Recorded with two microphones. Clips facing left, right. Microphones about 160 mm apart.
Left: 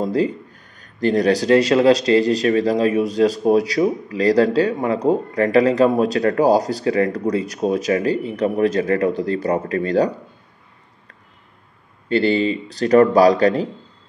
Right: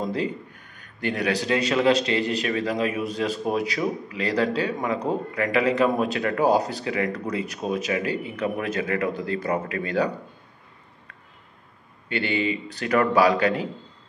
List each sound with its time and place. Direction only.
0.0 s a man's voice: 35° left (ahead or behind)
12.1 s a man's voice: 35° left (ahead or behind)